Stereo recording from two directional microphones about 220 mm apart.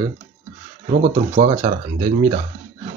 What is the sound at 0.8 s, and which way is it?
Speech, 30° right (ahead or behind).